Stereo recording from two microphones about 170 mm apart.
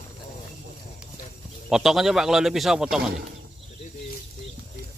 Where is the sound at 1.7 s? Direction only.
Centre (ahead or behind).